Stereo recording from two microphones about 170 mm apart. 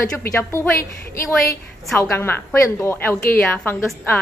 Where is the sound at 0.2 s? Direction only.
15° left (ahead or behind).